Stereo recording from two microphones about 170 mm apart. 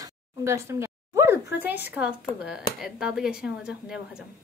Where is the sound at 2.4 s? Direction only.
5° right (ahead or behind).